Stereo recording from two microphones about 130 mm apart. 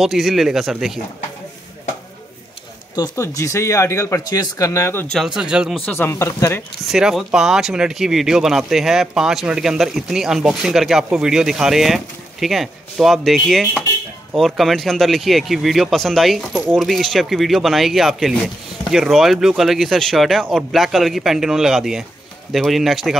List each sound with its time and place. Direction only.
0.0 s speech: centre (ahead or behind)
3.0 s speech: 25° left (ahead or behind)
5.1 s speech: 5° right (ahead or behind)
5.8 s speech: 15° left (ahead or behind)
6.9 s speech: 5° right (ahead or behind)